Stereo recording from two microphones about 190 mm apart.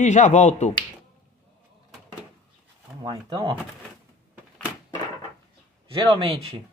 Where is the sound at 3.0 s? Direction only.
25° right (ahead or behind).